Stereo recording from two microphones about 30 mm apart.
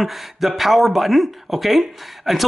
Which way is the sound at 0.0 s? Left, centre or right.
Centre.